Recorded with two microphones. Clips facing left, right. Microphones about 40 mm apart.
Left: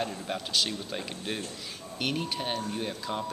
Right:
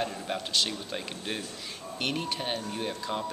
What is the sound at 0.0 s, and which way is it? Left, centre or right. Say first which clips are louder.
Speech: right 1 dB; centre.